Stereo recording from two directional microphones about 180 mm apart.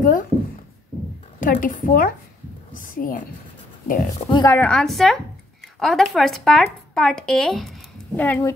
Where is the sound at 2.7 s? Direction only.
50° left (ahead or behind).